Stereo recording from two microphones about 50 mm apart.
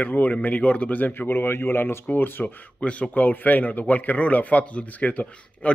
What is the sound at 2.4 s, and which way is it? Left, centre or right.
Speech, left.